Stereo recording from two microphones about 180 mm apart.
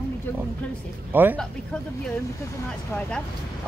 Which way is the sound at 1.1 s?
10° right (ahead or behind).